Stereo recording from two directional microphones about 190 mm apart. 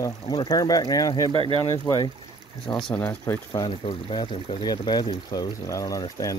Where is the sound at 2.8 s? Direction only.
10° left (ahead or behind).